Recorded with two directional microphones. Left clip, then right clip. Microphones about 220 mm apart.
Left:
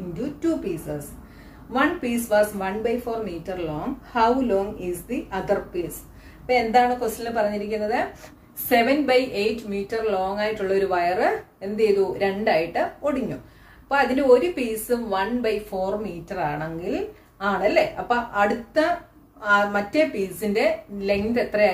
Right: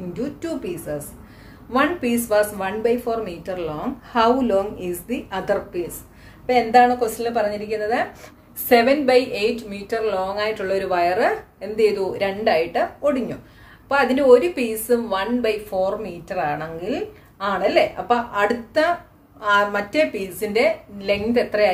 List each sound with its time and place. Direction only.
0.1 s a woman's voice: 40° right (ahead or behind)
8.6 s a woman's voice: 35° right (ahead or behind)